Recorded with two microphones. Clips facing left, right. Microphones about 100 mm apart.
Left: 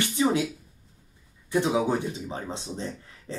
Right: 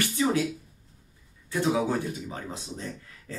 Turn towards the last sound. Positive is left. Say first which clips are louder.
# left 2 dB
turn(degrees=25)  # may be behind; listen again after turning